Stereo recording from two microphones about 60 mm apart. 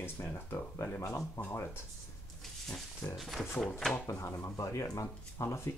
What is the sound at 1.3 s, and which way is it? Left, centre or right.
Speech, left.